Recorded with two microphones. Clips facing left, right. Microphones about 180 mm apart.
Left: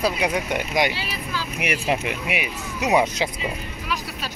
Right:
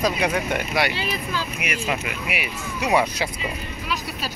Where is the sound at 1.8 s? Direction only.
30° left (ahead or behind).